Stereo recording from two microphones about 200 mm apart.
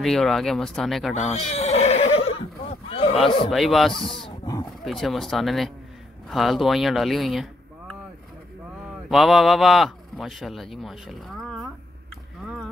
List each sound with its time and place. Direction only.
0.0 s a man's voice: centre (ahead or behind)
1.3 s neigh: 35° left (ahead or behind)
2.9 s a sound: 30° left (ahead or behind)
3.3 s speech: 25° left (ahead or behind)
3.5 s a man's voice: centre (ahead or behind)
4.3 s wild animals: 15° left (ahead or behind)
4.8 s a man's voice: centre (ahead or behind)
9.1 s a man's voice: centre (ahead or behind)